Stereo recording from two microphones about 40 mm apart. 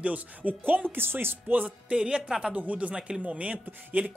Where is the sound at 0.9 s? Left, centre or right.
Right.